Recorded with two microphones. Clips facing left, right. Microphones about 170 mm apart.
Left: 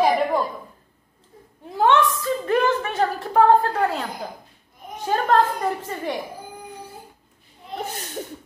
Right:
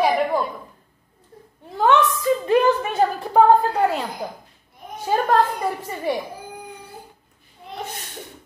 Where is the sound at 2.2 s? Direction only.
15° right (ahead or behind).